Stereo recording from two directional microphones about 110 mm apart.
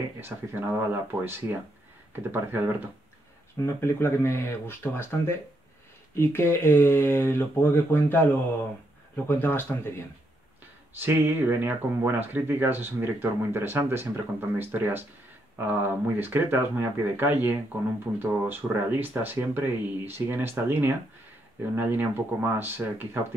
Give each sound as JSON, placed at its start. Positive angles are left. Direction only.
{"t": 0.2, "sound": "speech", "side_deg": -20}
{"t": 3.6, "sound": "speech", "side_deg": 20}
{"t": 11.0, "sound": "speech", "side_deg": -20}